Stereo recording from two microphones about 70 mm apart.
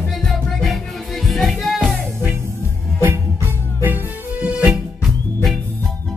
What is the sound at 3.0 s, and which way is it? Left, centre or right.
Music, right.